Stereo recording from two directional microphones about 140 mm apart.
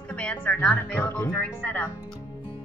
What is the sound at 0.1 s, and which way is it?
A woman's voice, 10° left (ahead or behind).